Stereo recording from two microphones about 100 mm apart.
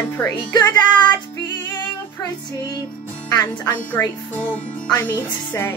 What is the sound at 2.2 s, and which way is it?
Music, 45° left (ahead or behind).